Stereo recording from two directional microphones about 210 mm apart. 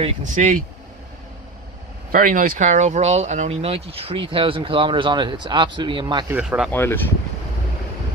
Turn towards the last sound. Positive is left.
turn(degrees=10)  # may be behind; listen again after turning